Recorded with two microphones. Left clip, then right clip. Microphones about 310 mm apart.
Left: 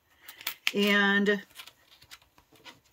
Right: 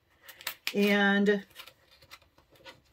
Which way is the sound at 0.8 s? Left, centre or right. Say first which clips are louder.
Left 1 dB; centre.